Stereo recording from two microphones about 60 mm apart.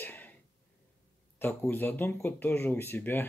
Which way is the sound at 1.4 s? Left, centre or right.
Left.